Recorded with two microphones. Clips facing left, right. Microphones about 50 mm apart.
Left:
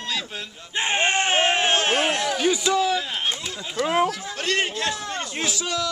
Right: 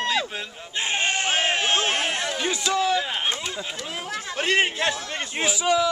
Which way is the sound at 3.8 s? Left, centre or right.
Left.